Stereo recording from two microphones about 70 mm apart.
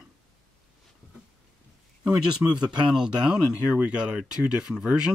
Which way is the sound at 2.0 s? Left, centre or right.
Centre.